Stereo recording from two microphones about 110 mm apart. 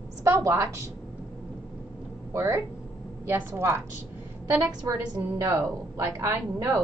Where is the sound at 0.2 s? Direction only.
25° right (ahead or behind).